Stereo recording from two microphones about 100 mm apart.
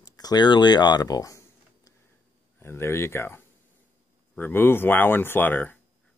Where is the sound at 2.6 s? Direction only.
25° left (ahead or behind).